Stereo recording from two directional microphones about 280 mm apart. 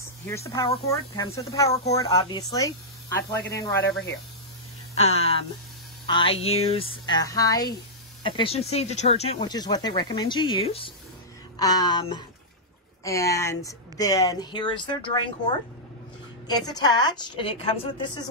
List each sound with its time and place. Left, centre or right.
0.0 s speech: centre
4.9 s speech: left